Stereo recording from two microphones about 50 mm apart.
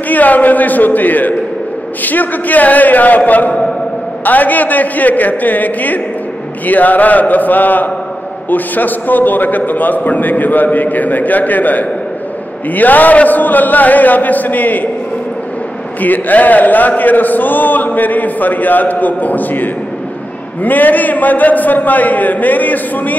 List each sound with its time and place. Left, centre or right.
0.1 s a man's voice: left
16.0 s a man's voice: left